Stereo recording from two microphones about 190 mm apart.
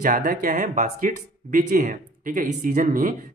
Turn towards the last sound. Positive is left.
turn(degrees=-45)  # may be behind; listen again after turning